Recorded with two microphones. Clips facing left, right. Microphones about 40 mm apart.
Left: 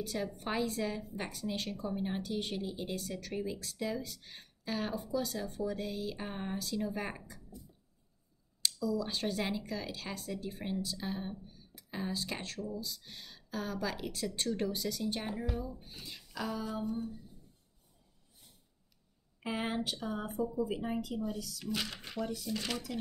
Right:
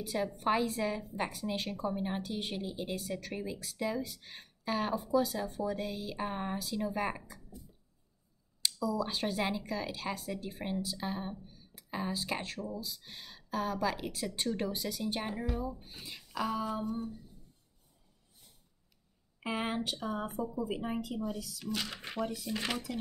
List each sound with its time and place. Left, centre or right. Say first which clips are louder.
0.0 s speech: right 4 dB; centre
8.8 s speech: right 1 dB; centre
19.4 s speech: right 1 dB; centre
21.9 s speech: right 2 dB; right